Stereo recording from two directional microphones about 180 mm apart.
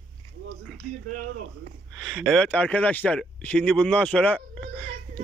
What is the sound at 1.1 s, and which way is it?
Speech, 50° right (ahead or behind).